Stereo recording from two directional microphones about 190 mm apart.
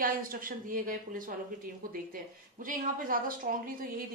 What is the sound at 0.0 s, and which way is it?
Speech, 50° right (ahead or behind).